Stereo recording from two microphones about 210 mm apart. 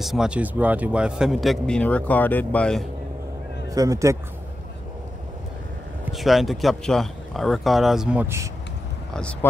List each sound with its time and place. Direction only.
0.0 s speech: centre (ahead or behind)
3.7 s speech: 15° right (ahead or behind)
6.1 s speech: centre (ahead or behind)
9.1 s speech: 5° left (ahead or behind)